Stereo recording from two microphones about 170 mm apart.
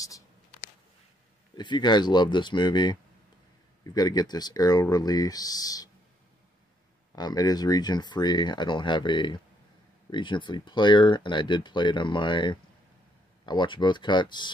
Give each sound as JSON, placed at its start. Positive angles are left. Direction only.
{"t": 1.6, "sound": "speech", "side_deg": 25}
{"t": 7.2, "sound": "speech", "side_deg": 25}